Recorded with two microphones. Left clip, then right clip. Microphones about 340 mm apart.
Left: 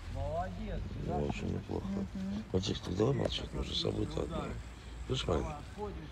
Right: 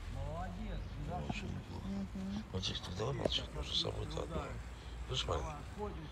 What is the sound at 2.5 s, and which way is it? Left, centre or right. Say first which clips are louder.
Speech: left 7 dB; right.